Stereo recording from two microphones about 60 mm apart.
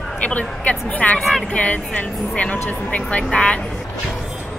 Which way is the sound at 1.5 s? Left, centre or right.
Left.